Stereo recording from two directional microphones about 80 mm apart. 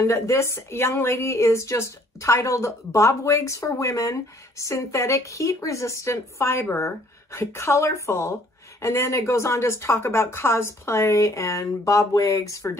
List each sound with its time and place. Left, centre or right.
0.0 s a woman's voice: left